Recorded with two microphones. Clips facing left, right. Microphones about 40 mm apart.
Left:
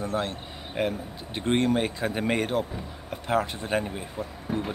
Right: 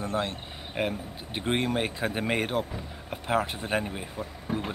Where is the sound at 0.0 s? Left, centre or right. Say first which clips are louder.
Left 1 dB; right.